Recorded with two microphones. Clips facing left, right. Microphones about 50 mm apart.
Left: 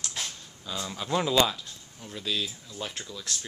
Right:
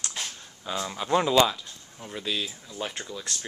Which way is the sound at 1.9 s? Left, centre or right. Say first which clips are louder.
Right 1 dB; right.